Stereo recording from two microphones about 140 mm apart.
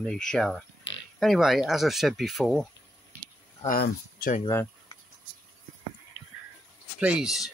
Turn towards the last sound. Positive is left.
turn(degrees=-5)  # may be behind; listen again after turning